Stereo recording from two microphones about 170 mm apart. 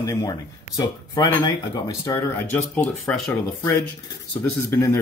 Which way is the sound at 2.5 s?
10° left (ahead or behind).